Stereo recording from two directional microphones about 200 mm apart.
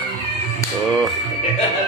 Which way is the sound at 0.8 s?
Centre (ahead or behind).